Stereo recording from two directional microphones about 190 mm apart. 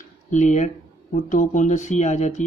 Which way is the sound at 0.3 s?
40° left (ahead or behind).